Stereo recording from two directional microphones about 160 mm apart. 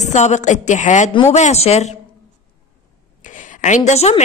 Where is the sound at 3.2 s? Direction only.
50° left (ahead or behind).